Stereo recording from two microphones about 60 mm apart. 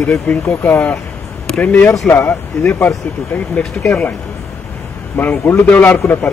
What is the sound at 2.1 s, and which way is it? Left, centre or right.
Speech, left.